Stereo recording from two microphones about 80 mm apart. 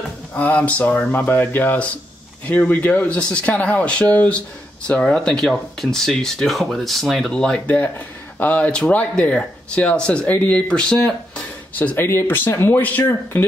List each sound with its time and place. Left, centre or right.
0.3 s speech: centre
7.6 s speech: left